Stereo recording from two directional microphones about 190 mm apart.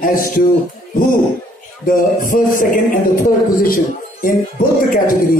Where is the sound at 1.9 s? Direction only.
45° left (ahead or behind).